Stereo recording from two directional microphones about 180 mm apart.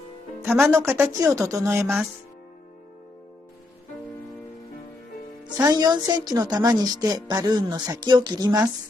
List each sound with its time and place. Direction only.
0.4 s speech: 10° right (ahead or behind)
5.6 s a woman's voice: 20° right (ahead or behind)